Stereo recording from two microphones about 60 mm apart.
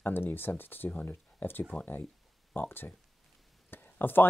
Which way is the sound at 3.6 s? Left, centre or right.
Left.